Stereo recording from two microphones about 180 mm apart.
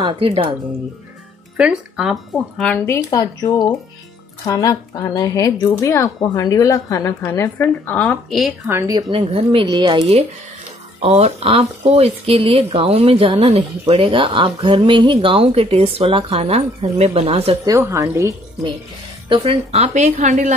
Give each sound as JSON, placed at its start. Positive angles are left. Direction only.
{"t": 0.0, "sound": "speech", "side_deg": -30}
{"t": 1.6, "sound": "speech", "side_deg": -5}
{"t": 8.6, "sound": "speech", "side_deg": -15}
{"t": 17.6, "sound": "a woman's voice", "side_deg": -15}
{"t": 19.2, "sound": "speech", "side_deg": -25}